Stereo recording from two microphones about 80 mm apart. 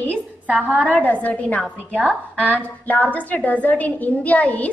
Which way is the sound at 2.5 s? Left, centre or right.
Centre.